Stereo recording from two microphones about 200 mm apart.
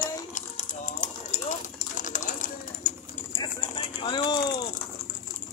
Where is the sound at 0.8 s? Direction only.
35° left (ahead or behind).